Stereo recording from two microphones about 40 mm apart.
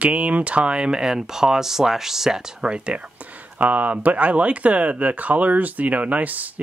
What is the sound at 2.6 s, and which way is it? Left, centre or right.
Speech, right.